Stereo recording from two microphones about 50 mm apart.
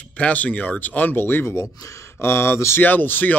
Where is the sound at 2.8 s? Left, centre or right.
Left.